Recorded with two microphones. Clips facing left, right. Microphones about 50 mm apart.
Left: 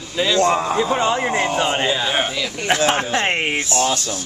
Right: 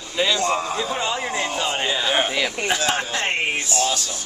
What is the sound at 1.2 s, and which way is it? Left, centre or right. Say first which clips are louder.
Speech: left 5 dB; left.